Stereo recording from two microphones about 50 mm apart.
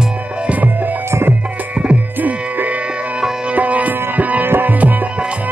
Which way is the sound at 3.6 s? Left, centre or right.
Right.